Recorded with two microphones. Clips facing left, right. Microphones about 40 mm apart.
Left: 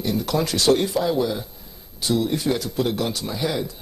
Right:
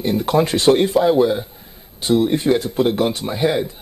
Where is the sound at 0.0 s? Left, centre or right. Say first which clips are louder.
Right 6 dB; right.